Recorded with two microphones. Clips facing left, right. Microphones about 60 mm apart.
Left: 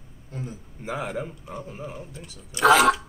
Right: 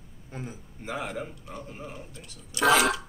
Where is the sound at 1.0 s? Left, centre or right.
Centre.